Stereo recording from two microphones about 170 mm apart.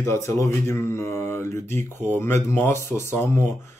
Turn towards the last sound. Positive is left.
turn(degrees=15)  # may be behind; listen again after turning